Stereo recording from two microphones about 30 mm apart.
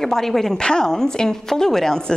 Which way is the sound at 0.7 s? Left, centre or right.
Left.